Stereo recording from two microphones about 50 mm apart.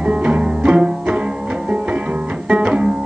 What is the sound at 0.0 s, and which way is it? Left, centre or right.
Music, right.